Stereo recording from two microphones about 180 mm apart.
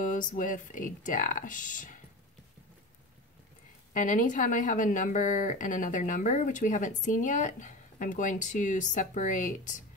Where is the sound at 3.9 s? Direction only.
45° left (ahead or behind).